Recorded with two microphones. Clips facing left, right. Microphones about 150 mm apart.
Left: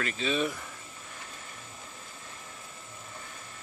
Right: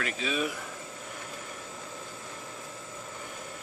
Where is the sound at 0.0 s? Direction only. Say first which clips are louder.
Left 1 dB; 5° right (ahead or behind).